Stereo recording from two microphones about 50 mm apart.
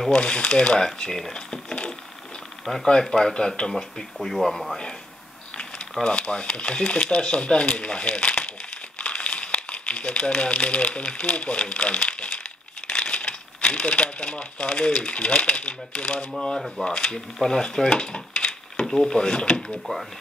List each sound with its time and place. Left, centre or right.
0.1 s speech: centre
1.3 s mechanisms: centre
2.6 s speech: centre
4.2 s speech: centre
6.0 s speech: centre
16.5 s speech: centre
16.8 s speech: centre